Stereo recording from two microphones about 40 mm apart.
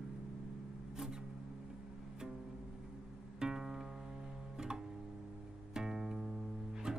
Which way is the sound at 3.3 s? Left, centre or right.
Centre.